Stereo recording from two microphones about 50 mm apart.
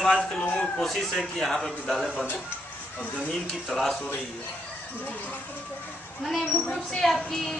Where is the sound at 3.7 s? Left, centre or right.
Centre.